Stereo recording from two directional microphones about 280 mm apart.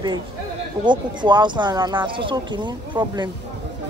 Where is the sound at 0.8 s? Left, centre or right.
Centre.